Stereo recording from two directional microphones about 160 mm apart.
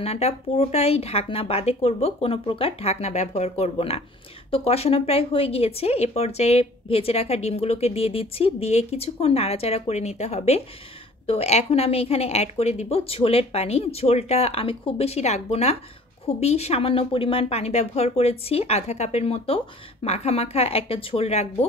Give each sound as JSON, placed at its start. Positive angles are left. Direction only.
{"t": 0.0, "sound": "speech", "side_deg": 40}